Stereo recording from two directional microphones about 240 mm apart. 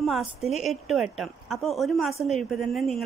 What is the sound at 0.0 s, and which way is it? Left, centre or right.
A woman's voice, centre.